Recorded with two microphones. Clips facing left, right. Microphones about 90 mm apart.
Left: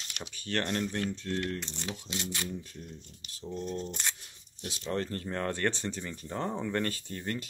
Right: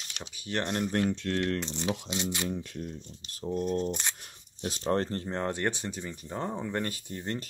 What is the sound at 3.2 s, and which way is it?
Speech, 25° right (ahead or behind).